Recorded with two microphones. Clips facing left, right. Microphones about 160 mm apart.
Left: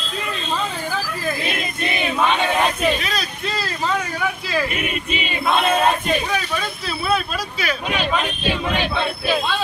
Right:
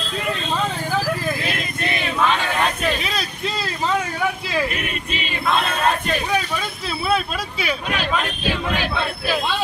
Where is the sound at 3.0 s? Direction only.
20° right (ahead or behind).